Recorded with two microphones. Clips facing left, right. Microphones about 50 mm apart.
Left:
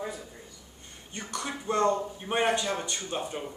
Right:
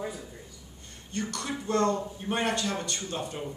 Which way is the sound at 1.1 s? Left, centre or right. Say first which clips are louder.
Right 2 dB; centre.